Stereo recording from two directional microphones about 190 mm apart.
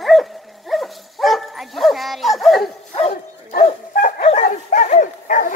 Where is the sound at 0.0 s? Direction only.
Centre (ahead or behind).